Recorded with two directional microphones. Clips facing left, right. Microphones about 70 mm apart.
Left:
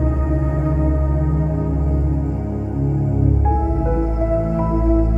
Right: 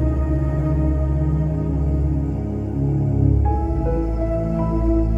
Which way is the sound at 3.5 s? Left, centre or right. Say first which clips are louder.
Left 3 dB; left.